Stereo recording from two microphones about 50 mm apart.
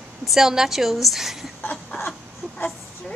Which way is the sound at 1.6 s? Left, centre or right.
Left.